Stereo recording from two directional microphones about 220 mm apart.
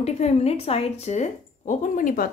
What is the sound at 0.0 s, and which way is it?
A woman's voice, 30° left (ahead or behind).